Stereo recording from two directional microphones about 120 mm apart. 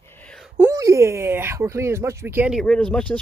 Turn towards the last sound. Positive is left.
turn(degrees=10)  # may be behind; listen again after turning